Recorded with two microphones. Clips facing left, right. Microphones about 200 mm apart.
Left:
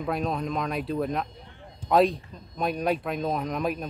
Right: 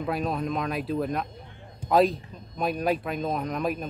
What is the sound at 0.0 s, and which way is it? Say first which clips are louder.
Speech: even; centre (ahead or behind).